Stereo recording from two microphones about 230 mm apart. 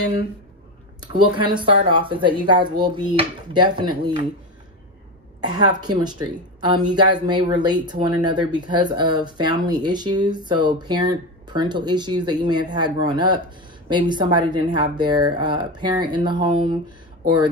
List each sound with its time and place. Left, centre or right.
1.0 s speech: right
5.4 s speech: centre